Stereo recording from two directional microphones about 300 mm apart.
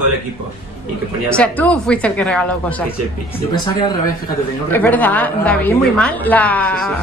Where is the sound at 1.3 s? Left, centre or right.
Centre.